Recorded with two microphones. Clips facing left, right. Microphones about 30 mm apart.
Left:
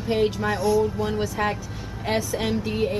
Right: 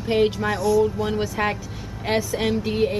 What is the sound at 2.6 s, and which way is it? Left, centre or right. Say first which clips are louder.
Speech: right 3 dB; centre.